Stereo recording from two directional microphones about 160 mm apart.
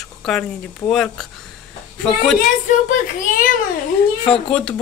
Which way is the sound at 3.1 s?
55° left (ahead or behind).